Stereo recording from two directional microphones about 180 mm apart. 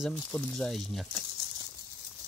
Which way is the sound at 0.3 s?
5° left (ahead or behind).